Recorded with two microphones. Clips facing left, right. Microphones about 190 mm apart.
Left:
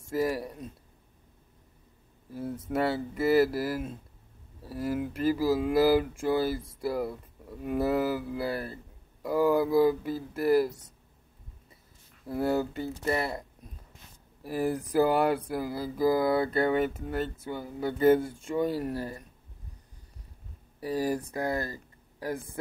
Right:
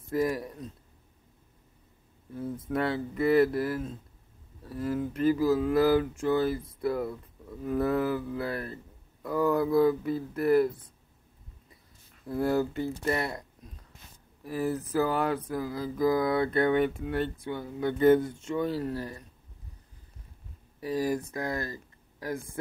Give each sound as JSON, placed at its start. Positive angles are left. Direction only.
{"t": 0.1, "sound": "speech", "side_deg": 30}
{"t": 2.7, "sound": "a sound", "side_deg": 5}
{"t": 9.2, "sound": "speech", "side_deg": 5}
{"t": 12.3, "sound": "speech", "side_deg": 25}
{"t": 14.6, "sound": "a sound", "side_deg": 15}
{"t": 20.8, "sound": "speech", "side_deg": 30}